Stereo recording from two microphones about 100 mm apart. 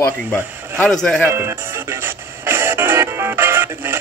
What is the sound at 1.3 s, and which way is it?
Music, 25° right (ahead or behind).